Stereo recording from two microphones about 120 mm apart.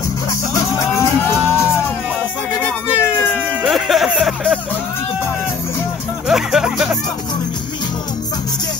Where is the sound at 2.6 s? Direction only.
20° left (ahead or behind).